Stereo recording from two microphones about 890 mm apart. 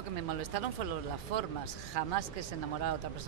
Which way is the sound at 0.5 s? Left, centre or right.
Right.